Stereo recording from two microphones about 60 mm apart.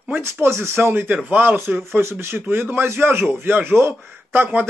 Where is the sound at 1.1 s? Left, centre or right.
Right.